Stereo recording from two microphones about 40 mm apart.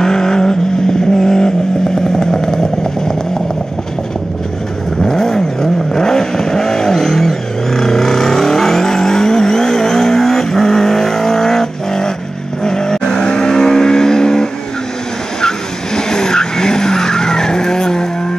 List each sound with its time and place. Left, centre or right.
0.0 s vehicle: centre
5.0 s vehicle: centre